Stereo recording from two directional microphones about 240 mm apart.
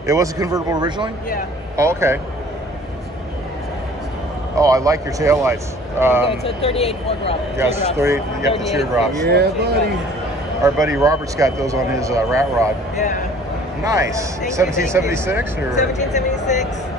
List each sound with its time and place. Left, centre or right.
0.0 s speech: centre
4.6 s speech: centre
6.4 s speech: left
7.5 s speech: centre
8.5 s speech: centre
9.2 s speech: right
10.6 s speech: centre
13.8 s speech: centre
15.9 s speech: left